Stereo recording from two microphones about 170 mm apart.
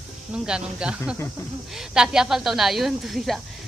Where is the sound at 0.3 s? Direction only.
5° right (ahead or behind).